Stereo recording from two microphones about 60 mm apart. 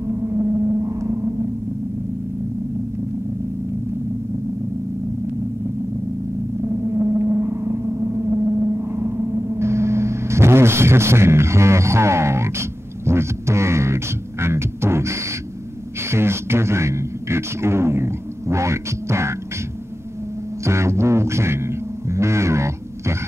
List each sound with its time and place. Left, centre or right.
0.0 s a sound: right
0.8 s vehicle: right
6.9 s vehicle: right
16.0 s a man's voice: right
20.6 s music: right